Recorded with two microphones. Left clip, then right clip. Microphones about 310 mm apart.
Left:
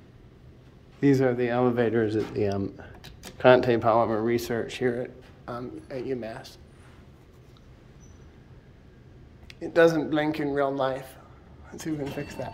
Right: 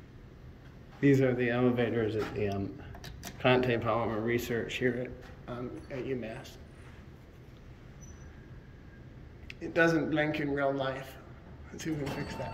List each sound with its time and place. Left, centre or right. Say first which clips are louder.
1.0 s speech: left 4 dB; centre
9.6 s speech: left 7 dB; centre